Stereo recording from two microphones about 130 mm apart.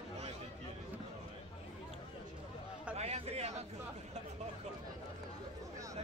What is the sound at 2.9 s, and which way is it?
Chatter, 55° right (ahead or behind).